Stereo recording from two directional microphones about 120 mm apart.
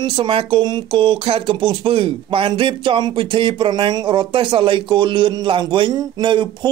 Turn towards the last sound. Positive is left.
turn(degrees=-40)  # may be behind; listen again after turning